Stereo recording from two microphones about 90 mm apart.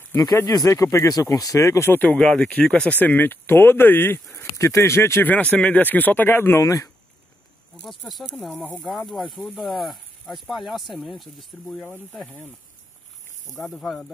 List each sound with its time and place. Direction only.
0.7 s speech: 30° left (ahead or behind)
2.0 s speech: 10° left (ahead or behind); by 5.3 s 30° left (ahead or behind)
5.3 s speech: 15° left (ahead or behind)
6.6 s speech: 40° left (ahead or behind)
7.9 s speech: centre (ahead or behind)
12.3 s speech: 20° left (ahead or behind)
13.7 s speech: 5° left (ahead or behind)